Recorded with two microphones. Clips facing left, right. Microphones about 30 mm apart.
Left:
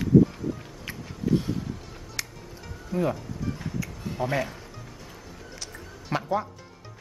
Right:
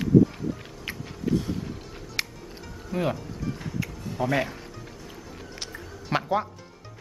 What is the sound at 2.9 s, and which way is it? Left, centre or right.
Speech, right.